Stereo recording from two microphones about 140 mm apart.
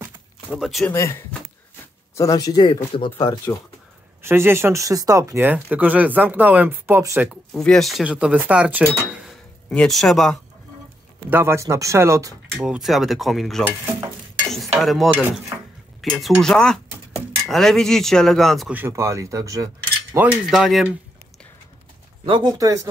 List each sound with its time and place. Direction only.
0.5 s speech: centre (ahead or behind)
2.1 s speech: 25° left (ahead or behind)
4.2 s speech: 15° right (ahead or behind)
7.2 s speech: 5° left (ahead or behind)
11.2 s speech: 15° right (ahead or behind)
12.5 s speech: 5° right (ahead or behind)
14.8 s speech: centre (ahead or behind)
18.7 s speech: 15° right (ahead or behind)
20.2 s speech: centre (ahead or behind)
22.2 s speech: 35° right (ahead or behind)